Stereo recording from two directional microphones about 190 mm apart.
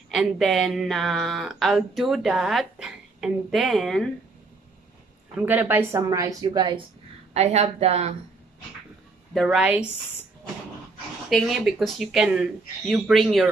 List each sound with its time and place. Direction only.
0.1 s speech: centre (ahead or behind)
5.4 s a woman's voice: 10° right (ahead or behind)
7.3 s a woman's voice: 35° right (ahead or behind)
9.3 s speech: centre (ahead or behind)
11.2 s speech: centre (ahead or behind)